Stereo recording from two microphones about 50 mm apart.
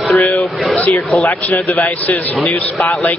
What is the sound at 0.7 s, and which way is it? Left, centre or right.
Speech, left.